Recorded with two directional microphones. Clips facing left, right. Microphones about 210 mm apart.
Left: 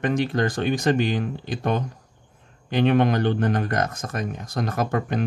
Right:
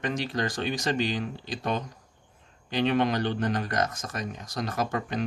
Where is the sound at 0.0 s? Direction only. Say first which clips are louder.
Left 7 dB; 55° left (ahead or behind).